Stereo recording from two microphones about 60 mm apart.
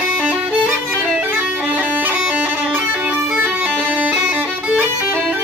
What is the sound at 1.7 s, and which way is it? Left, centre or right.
Bagpipes, right.